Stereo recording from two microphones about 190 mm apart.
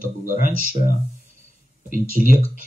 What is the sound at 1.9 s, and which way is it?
Speech, 45° right (ahead or behind).